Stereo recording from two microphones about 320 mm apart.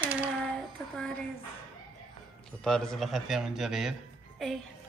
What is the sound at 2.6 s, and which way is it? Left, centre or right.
A man's voice, centre.